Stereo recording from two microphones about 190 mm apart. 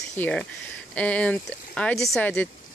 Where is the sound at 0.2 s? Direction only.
5° left (ahead or behind).